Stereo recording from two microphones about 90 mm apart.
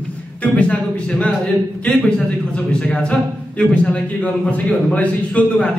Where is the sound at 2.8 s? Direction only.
15° left (ahead or behind).